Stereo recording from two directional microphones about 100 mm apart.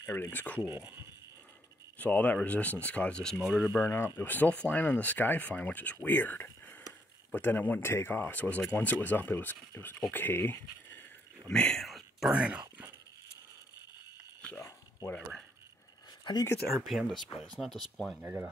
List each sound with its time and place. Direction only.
0.0 s speech: 25° left (ahead or behind)
0.6 s speech: 20° right (ahead or behind)
2.0 s speech: 15° left (ahead or behind)
3.3 s speech: 5° right (ahead or behind)
3.7 s speech: 20° left (ahead or behind)
11.4 s whispering: 10° left (ahead or behind)
12.3 s speech: 10° right (ahead or behind)
16.3 s speech: 50° left (ahead or behind)
16.8 s speech: centre (ahead or behind)
18.2 s speech: 20° right (ahead or behind)